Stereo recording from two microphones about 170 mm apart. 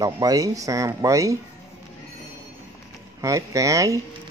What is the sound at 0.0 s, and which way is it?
Speech, 20° right (ahead or behind).